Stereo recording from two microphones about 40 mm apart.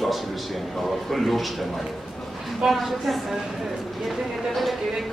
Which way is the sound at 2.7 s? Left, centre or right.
Centre.